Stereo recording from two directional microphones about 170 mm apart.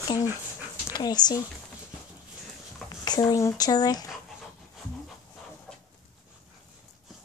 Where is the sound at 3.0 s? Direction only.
20° left (ahead or behind).